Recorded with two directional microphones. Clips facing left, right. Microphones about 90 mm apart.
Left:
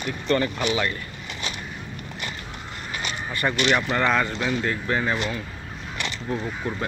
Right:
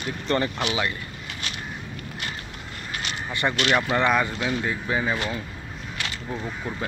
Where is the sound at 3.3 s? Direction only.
15° right (ahead or behind).